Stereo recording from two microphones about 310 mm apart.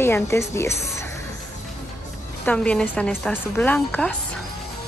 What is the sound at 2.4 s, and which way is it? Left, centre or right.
A woman's voice, centre.